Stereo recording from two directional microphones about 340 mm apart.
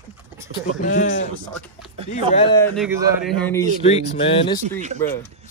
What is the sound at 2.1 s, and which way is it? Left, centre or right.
A man's voice, centre.